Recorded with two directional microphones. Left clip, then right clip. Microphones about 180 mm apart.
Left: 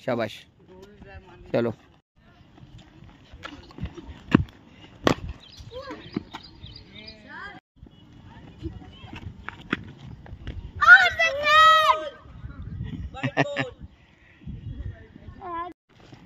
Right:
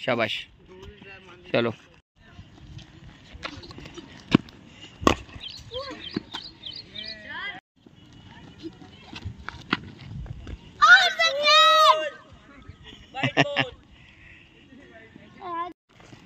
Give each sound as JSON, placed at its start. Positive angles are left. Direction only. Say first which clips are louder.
{"t": 0.0, "sound": "speech", "louder": "right 3 dB", "side_deg": 5}
{"t": 1.5, "sound": "speech", "louder": "right 1 dB", "side_deg": 10}
{"t": 3.6, "sound": "clip-clop", "louder": "right 1 dB", "side_deg": 5}
{"t": 5.5, "sound": "horse", "louder": "right 9 dB", "side_deg": 45}
{"t": 5.9, "sound": "chicken", "louder": "right 2 dB", "side_deg": 10}
{"t": 6.7, "sound": "a sound", "louder": "right 9 dB", "side_deg": 50}
{"t": 8.5, "sound": "horse", "louder": "left 1 dB", "side_deg": 0}
{"t": 10.8, "sound": "a sound", "louder": "left 1 dB", "side_deg": 5}
{"t": 15.3, "sound": "a sound", "louder": "right 1 dB", "side_deg": 0}